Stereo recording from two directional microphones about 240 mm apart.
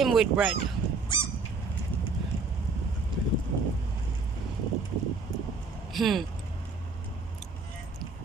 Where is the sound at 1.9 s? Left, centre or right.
Centre.